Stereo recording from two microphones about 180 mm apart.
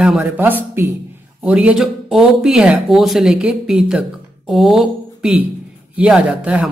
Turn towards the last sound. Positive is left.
turn(degrees=-5)  # may be behind; listen again after turning